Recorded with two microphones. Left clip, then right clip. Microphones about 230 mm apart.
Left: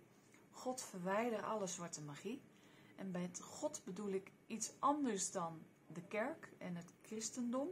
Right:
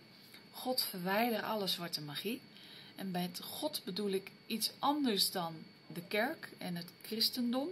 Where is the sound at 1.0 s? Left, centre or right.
Centre.